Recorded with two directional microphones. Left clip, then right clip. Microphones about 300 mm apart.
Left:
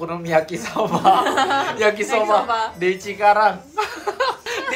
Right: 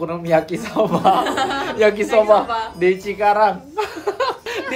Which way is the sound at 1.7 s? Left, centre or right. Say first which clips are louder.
Right 2 dB; centre.